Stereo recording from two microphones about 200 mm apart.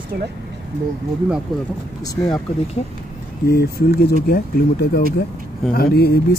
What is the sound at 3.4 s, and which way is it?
Speech, 50° left (ahead or behind).